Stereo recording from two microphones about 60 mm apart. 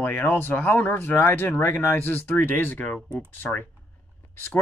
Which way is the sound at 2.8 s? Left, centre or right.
Centre.